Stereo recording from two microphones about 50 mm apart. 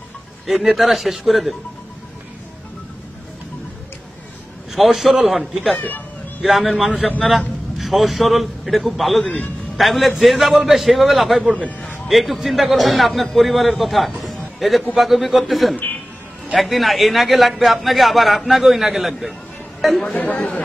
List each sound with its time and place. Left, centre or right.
0.5 s a man's voice: centre
4.7 s a man's voice: centre
5.8 s speech: left
6.4 s a man's voice: centre
9.2 s speech: centre
9.8 s a man's voice: centre
20.1 s speech: left